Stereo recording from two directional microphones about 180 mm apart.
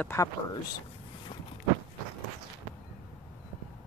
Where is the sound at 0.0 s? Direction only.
15° left (ahead or behind).